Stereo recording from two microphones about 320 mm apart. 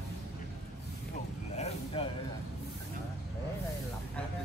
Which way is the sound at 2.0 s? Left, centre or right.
Centre.